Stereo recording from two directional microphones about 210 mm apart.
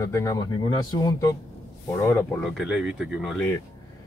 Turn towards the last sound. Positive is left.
turn(degrees=0)  # may be behind; listen again after turning